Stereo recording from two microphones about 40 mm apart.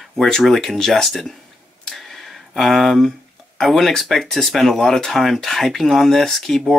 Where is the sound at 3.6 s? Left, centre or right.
Centre.